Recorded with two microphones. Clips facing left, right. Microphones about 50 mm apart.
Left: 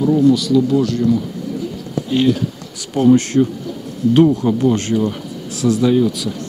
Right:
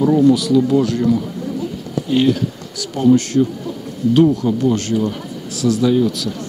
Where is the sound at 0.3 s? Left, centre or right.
Centre.